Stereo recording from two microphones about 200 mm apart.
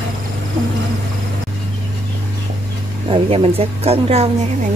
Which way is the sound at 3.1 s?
30° right (ahead or behind).